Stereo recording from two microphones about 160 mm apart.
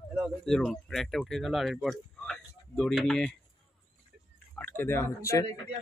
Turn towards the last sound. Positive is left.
turn(degrees=15)  # may be behind; listen again after turning